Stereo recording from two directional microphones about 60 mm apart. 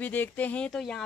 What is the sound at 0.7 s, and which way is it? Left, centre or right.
Speech, centre.